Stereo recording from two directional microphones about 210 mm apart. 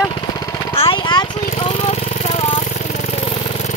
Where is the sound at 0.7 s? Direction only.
25° left (ahead or behind).